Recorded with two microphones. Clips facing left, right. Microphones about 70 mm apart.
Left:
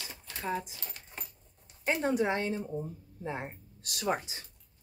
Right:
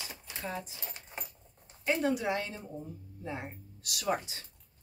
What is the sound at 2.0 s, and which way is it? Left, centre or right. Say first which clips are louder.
Speech: left 2 dB; left.